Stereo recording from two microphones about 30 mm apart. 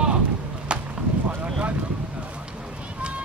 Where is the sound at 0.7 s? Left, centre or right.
Right.